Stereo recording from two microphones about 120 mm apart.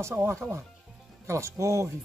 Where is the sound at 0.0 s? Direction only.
20° right (ahead or behind).